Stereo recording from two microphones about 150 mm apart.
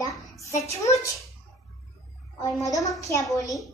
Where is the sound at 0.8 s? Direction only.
20° left (ahead or behind).